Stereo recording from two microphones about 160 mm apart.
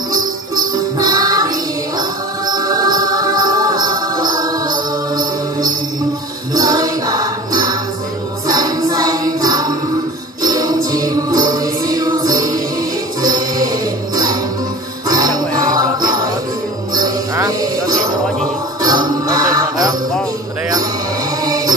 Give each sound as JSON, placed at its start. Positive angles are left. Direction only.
{"t": 0.9, "sound": "music", "side_deg": -25}
{"t": 15.0, "sound": "jingle bell", "side_deg": -25}
{"t": 16.9, "sound": "music", "side_deg": -25}
{"t": 21.5, "sound": "music", "side_deg": -25}